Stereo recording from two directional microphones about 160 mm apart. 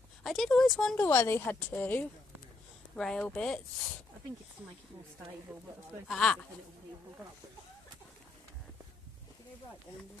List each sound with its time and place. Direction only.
0.2 s speech: centre (ahead or behind)
6.0 s speech: 5° left (ahead or behind)